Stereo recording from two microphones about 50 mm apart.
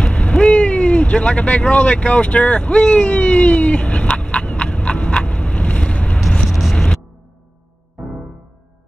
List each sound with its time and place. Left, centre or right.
0.0 s vehicle: left
6.4 s vehicle: centre